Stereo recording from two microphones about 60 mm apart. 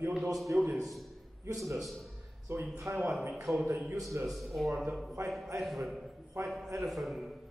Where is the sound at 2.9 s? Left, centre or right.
Right.